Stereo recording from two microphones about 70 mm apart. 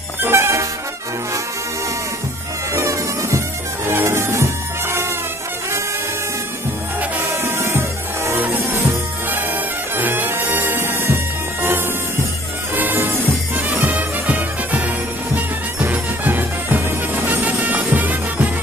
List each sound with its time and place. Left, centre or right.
0.2 s music: right
2.7 s music: right
7.0 s music: right
12.7 s music: right